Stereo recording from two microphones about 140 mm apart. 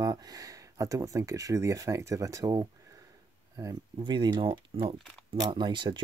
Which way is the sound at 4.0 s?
35° right (ahead or behind).